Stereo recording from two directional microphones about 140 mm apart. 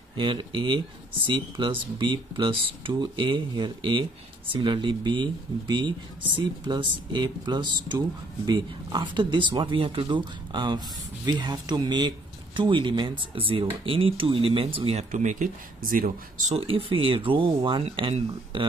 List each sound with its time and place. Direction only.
0.2 s speech: 35° right (ahead or behind)
15.0 s speech: 65° right (ahead or behind)
16.5 s speech: 40° right (ahead or behind)